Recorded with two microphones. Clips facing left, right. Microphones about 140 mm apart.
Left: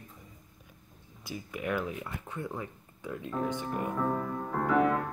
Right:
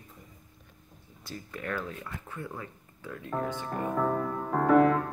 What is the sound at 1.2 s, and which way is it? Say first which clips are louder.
Speech: left 2 dB; 10° left (ahead or behind).